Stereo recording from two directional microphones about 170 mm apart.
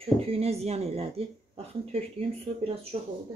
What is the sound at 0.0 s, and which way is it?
Speech, 35° right (ahead or behind).